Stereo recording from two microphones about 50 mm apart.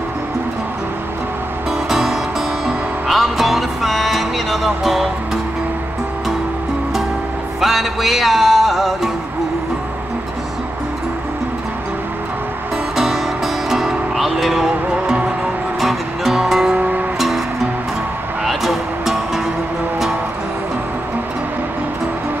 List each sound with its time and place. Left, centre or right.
1.9 s music: centre
7.6 s music: centre
12.9 s music: centre
15.8 s music: centre
16.7 s music: right
18.4 s music: centre